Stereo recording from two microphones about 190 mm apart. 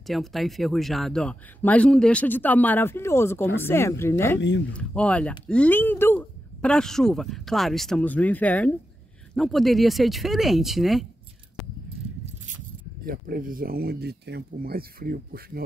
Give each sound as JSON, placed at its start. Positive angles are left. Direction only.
{"t": 0.0, "sound": "speech", "side_deg": 0}
{"t": 4.4, "sound": "speech", "side_deg": 70}
{"t": 4.7, "sound": "speech", "side_deg": 5}
{"t": 13.0, "sound": "speech", "side_deg": -50}